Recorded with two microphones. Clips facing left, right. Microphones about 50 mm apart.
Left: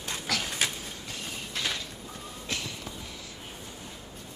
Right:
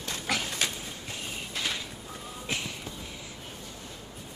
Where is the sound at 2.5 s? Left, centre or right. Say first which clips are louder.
Right 1 dB; right.